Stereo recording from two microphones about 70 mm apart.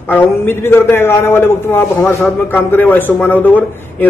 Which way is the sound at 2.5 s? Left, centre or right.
Left.